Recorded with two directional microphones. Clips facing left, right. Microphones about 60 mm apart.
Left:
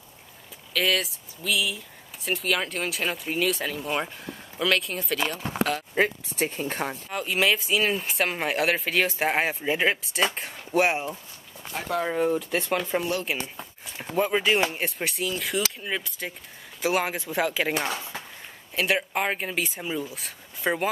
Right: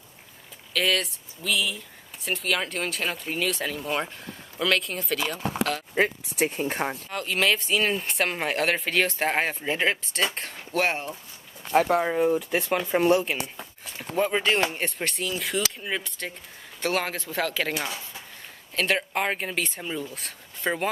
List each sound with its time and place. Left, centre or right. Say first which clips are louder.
0.7 s speech: even; centre
7.1 s speech: left 2 dB; centre
12.0 s speech: right 2 dB; centre
13.6 s speech: even; centre
17.7 s speech: left 3 dB; left
18.8 s speech: even; centre